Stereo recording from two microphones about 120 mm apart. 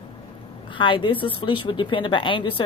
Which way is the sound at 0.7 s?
45° left (ahead or behind).